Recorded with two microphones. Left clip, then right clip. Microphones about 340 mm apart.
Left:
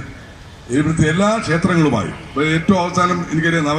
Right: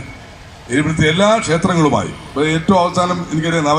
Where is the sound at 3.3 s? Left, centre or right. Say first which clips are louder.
Right 2 dB; right.